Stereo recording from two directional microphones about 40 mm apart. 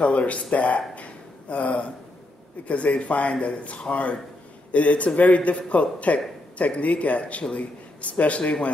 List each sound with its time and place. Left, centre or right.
0.0 s speech: left
0.9 s a sound: left
2.7 s a man's voice: left